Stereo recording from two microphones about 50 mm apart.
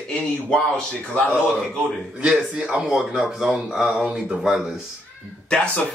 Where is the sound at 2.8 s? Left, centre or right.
Centre.